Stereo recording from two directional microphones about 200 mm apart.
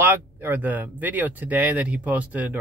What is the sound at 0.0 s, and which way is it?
Speech, 10° right (ahead or behind).